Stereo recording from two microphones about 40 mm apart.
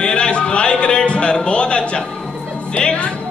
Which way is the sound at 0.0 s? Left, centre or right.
Left.